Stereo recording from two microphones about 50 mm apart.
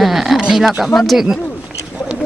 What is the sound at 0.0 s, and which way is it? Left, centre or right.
Speech, centre.